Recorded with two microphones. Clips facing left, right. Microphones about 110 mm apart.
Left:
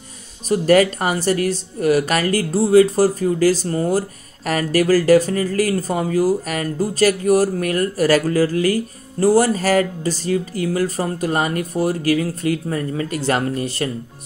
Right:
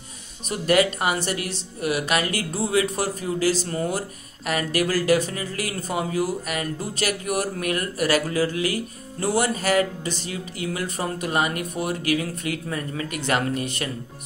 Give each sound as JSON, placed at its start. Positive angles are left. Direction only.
{"t": 0.5, "sound": "speech", "side_deg": 40}